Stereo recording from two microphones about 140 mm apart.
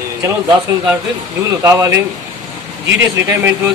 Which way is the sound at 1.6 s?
20° right (ahead or behind).